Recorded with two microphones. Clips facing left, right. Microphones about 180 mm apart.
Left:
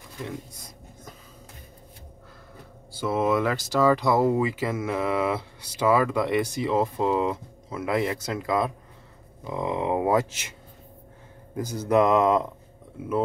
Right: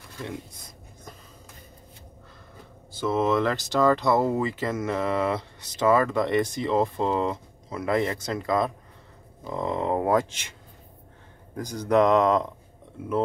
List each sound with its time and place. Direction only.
2.9 s speech: 10° left (ahead or behind)
11.5 s speech: 5° left (ahead or behind)